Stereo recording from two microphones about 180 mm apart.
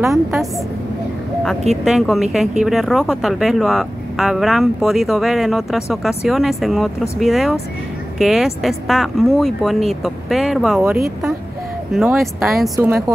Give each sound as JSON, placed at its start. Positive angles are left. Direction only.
{"t": 0.0, "sound": "speech", "side_deg": 0}
{"t": 1.9, "sound": "speech", "side_deg": 0}
{"t": 11.9, "sound": "speech", "side_deg": 0}
{"t": 12.7, "sound": "a woman's voice", "side_deg": -15}